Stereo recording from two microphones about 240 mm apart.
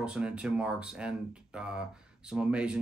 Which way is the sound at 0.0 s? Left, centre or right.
Centre.